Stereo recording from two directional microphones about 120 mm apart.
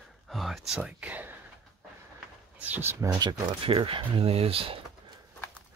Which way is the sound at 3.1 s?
35° right (ahead or behind).